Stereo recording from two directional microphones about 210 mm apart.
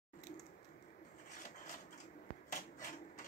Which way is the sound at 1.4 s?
40° left (ahead or behind).